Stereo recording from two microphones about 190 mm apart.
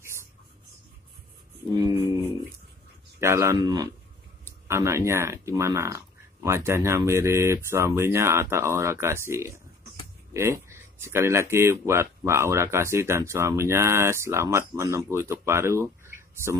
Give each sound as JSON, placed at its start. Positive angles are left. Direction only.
{"t": 3.2, "sound": "speech", "side_deg": -15}